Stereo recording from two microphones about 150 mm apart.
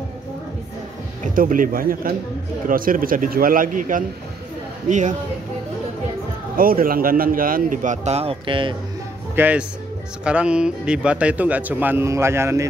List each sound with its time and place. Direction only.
1.2 s a man's voice: 65° right (ahead or behind)
6.5 s a man's voice: 70° right (ahead or behind); by 8.7 s 35° right (ahead or behind)
9.3 s a man's voice: 10° right (ahead or behind)